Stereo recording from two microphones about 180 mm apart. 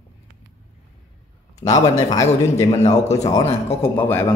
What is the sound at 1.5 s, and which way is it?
A man's voice, 20° left (ahead or behind).